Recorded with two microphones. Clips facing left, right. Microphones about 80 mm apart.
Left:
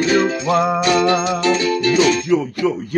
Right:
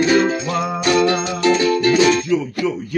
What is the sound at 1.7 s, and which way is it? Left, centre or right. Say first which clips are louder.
Music: right 1 dB; right.